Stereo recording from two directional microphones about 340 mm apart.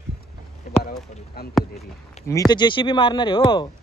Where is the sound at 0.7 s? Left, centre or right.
Left.